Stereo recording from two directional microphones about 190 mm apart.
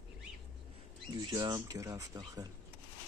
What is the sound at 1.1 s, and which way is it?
Speech, 20° right (ahead or behind).